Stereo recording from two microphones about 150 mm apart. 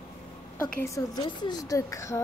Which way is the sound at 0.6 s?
20° left (ahead or behind).